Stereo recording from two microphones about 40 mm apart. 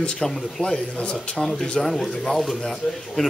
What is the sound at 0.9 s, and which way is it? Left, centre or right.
Speech, left.